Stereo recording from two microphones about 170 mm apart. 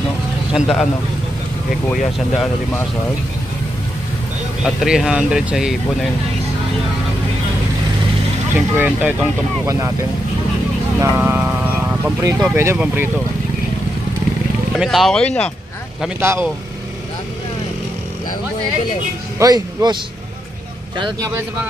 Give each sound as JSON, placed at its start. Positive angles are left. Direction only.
{"t": 0.5, "sound": "speech", "side_deg": 0}
{"t": 2.1, "sound": "speech", "side_deg": 5}
{"t": 4.6, "sound": "speech", "side_deg": -5}
{"t": 8.5, "sound": "speech", "side_deg": -10}
{"t": 9.7, "sound": "speech", "side_deg": -20}
{"t": 11.0, "sound": "speech", "side_deg": -15}
{"t": 14.8, "sound": "speech", "side_deg": 0}
{"t": 16.2, "sound": "speech", "side_deg": -15}
{"t": 19.3, "sound": "speech", "side_deg": -20}
{"t": 21.0, "sound": "speech", "side_deg": -20}